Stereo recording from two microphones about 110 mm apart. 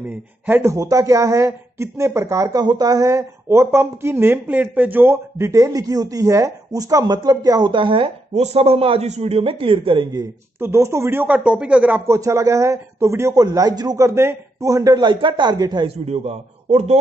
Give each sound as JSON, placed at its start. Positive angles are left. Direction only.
{"t": 0.1, "sound": "speech", "side_deg": -20}
{"t": 8.4, "sound": "a man's voice", "side_deg": -75}
{"t": 10.6, "sound": "speech", "side_deg": -25}
{"t": 12.1, "sound": "speech", "side_deg": -30}
{"t": 15.0, "sound": "a man's voice", "side_deg": -45}
{"t": 15.9, "sound": "a man's voice", "side_deg": -75}